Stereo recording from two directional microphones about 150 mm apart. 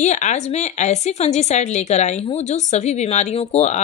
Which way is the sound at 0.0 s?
50° left (ahead or behind).